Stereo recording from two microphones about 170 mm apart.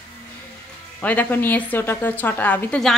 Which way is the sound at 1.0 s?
10° left (ahead or behind).